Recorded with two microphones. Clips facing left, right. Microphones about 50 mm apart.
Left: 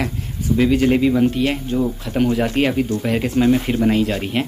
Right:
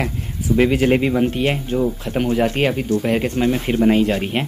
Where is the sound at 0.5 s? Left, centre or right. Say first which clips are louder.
Even; right.